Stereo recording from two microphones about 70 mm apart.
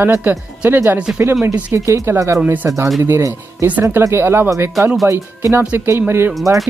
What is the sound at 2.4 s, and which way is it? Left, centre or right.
Speech, right.